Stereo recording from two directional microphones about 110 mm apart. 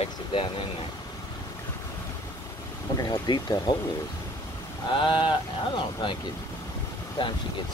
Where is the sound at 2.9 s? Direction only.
40° left (ahead or behind).